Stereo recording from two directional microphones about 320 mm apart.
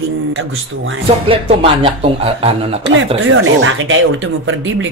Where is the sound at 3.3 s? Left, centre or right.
Right.